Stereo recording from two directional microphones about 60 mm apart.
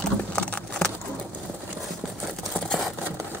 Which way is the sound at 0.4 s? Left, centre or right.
Centre.